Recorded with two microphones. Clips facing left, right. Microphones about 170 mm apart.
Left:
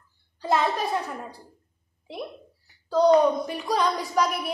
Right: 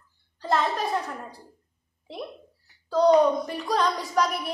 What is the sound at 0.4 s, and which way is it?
Speech, 5° left (ahead or behind).